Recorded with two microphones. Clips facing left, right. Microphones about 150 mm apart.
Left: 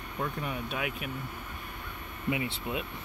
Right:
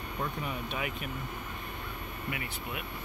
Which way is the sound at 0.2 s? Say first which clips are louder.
Left 2 dB; centre (ahead or behind).